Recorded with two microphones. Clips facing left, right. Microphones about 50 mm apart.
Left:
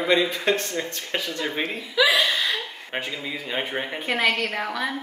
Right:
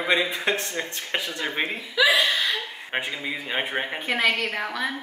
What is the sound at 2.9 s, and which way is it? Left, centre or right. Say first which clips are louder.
Speech: right 1 dB; centre.